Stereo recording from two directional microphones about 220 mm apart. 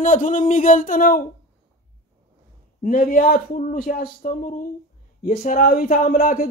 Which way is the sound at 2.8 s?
40° left (ahead or behind).